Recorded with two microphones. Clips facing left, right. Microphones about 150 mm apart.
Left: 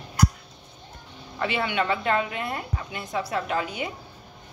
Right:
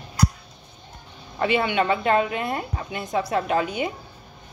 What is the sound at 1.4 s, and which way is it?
A woman's voice, 20° right (ahead or behind).